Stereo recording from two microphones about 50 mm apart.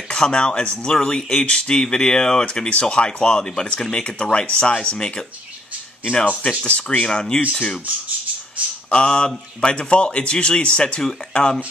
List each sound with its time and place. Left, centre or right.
0.1 s speech: centre
8.9 s speech: centre